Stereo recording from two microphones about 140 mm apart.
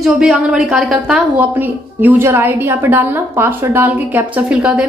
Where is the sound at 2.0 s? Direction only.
15° right (ahead or behind).